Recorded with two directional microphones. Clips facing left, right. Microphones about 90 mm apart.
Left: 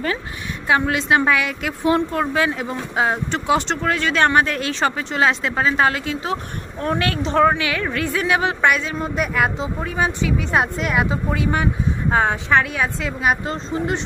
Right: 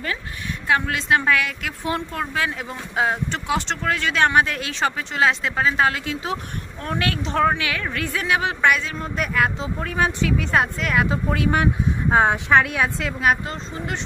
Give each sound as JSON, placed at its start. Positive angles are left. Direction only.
{"t": 0.7, "sound": "a woman's voice", "side_deg": 10}
{"t": 11.1, "sound": "a woman's voice", "side_deg": 0}
{"t": 13.5, "sound": "speech", "side_deg": 25}